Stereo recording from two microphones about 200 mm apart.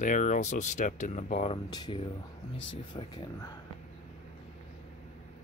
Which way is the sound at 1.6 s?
20° left (ahead or behind).